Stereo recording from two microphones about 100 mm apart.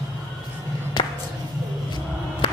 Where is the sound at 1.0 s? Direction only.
50° left (ahead or behind).